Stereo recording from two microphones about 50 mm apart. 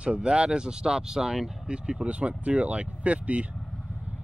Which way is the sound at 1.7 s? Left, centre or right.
Right.